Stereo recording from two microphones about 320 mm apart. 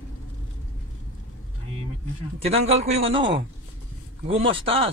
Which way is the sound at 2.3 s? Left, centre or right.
Centre.